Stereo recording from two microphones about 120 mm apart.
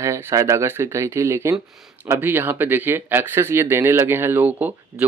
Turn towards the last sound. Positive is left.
turn(degrees=-15)  # may be behind; listen again after turning